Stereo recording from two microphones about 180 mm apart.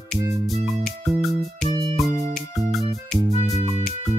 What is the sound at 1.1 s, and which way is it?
Music, centre (ahead or behind).